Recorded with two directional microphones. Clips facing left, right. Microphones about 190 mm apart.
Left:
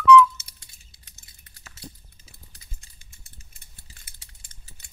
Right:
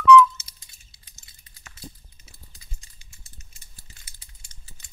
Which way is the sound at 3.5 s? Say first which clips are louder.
Even; 60° left (ahead or behind).